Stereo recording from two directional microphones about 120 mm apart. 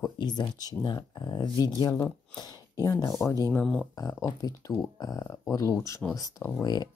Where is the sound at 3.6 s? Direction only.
5° left (ahead or behind).